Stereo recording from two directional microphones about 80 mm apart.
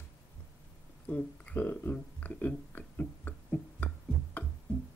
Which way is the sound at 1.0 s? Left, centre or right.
Centre.